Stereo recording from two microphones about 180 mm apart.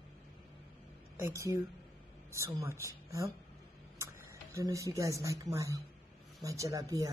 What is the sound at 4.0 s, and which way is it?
Speech, 15° right (ahead or behind).